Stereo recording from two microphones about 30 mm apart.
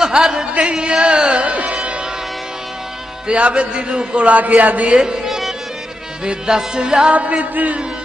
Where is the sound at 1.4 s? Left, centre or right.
Right.